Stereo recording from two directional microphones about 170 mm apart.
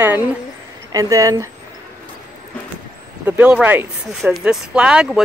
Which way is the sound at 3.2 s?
10° right (ahead or behind).